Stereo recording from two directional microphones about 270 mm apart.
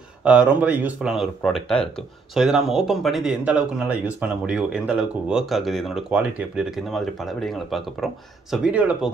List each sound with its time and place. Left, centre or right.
0.2 s speech: centre